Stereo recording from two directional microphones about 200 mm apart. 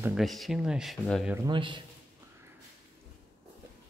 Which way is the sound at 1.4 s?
25° right (ahead or behind).